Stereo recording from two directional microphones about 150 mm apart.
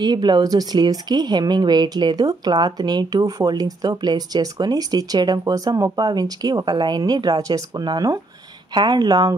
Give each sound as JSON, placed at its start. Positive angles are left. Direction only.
{"t": 0.0, "sound": "speech", "side_deg": -30}